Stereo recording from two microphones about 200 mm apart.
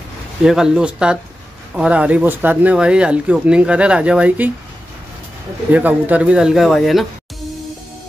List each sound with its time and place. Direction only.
0.4 s speech: 5° right (ahead or behind)
5.7 s speech: 10° right (ahead or behind)